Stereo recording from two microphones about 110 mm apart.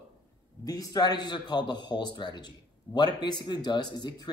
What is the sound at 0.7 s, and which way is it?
Speech, 35° left (ahead or behind).